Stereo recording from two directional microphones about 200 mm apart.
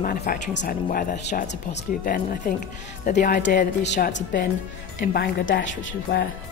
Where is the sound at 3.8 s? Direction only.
60° left (ahead or behind).